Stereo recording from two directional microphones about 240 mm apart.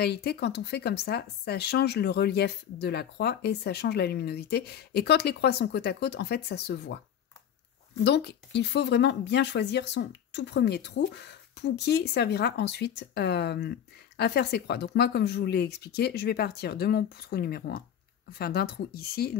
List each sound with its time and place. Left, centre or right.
0.0 s speech: left
8.0 s speech: left